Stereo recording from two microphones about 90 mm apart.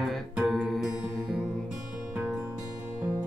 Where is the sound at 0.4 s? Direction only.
Centre (ahead or behind).